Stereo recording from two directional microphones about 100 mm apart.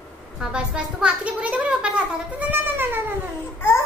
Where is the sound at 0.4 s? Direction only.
10° right (ahead or behind).